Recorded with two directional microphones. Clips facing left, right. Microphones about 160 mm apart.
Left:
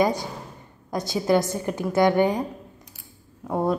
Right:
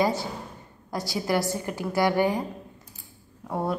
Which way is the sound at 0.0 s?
15° left (ahead or behind).